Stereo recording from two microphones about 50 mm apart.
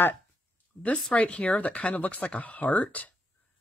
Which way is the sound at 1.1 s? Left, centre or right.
Left.